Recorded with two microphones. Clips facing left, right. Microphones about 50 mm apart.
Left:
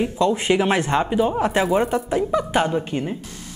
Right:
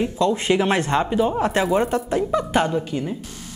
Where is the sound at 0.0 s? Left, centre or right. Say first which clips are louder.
Left 1 dB; centre.